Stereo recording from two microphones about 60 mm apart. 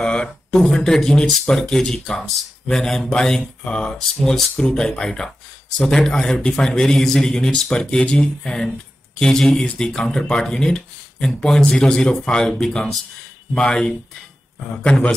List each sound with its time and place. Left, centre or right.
0.0 s speech: centre